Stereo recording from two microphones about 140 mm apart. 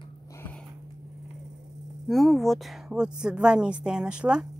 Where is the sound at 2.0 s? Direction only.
Centre (ahead or behind).